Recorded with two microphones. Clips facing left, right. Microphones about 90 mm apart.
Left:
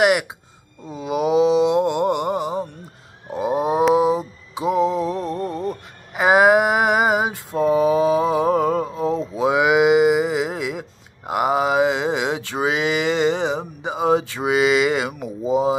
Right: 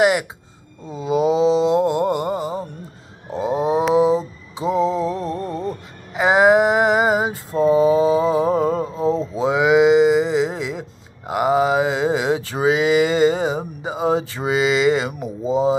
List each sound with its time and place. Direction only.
0.8 s mantra: 5° left (ahead or behind)
9.2 s cattle: 10° left (ahead or behind)
13.4 s a sound: 5° right (ahead or behind)